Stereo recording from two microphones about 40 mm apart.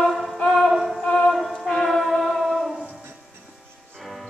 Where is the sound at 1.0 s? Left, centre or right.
Centre.